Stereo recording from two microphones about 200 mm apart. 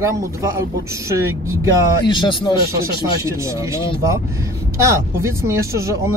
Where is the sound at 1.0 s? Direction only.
15° right (ahead or behind).